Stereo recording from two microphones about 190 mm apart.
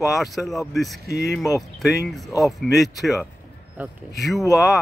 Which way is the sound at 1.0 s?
60° left (ahead or behind).